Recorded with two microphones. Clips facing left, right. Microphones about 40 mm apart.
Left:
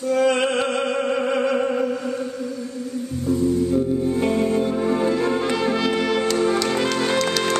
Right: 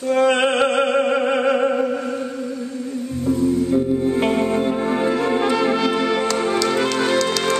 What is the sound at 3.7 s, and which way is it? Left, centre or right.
Music, right.